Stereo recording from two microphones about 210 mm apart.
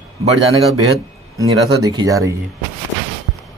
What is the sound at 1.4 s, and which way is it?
Speech, 15° right (ahead or behind).